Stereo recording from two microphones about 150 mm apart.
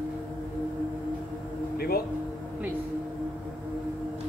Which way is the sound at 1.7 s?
90° left.